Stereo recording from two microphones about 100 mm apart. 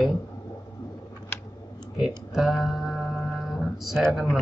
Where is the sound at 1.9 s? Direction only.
Centre (ahead or behind).